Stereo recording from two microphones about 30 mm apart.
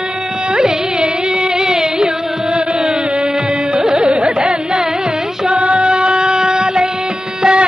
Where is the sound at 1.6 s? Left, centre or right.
Right.